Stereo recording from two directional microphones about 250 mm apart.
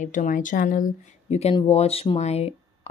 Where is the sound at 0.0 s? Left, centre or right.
Left.